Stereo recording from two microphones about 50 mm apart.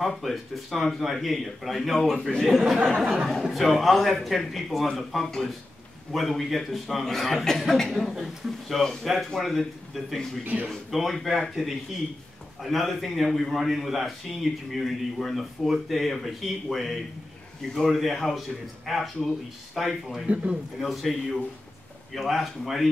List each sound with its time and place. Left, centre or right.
0.0 s a man's voice: centre
10.4 s speech: right
10.7 s a man's voice: centre
12.6 s a man's voice: centre